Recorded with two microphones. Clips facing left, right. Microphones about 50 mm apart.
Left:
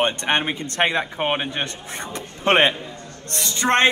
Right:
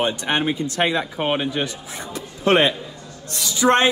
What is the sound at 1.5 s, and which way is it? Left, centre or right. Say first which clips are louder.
A man's voice: right 2 dB; left.